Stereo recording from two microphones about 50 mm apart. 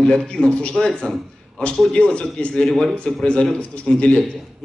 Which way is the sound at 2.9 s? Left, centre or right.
Left.